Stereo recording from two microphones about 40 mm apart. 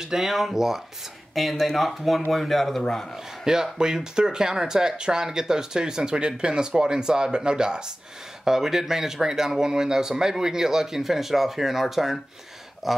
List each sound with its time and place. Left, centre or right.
0.0 s speech: centre
2.8 s a man's voice: centre
3.4 s speech: centre